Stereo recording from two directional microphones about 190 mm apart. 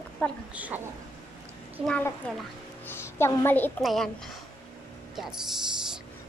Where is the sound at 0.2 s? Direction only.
10° left (ahead or behind).